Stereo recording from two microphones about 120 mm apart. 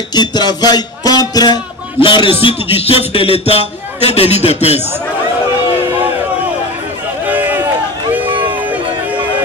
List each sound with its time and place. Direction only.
0.1 s music: 35° left (ahead or behind)
2.0 s a man's voice: 45° left (ahead or behind)
7.2 s run: 15° right (ahead or behind)